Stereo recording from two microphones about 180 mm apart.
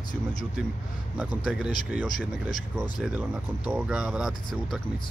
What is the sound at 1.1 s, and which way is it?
Speech, 5° right (ahead or behind).